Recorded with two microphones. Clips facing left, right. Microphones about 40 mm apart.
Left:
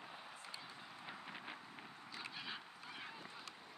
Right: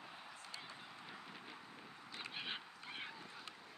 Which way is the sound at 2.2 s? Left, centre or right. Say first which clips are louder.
Right 2 dB; right.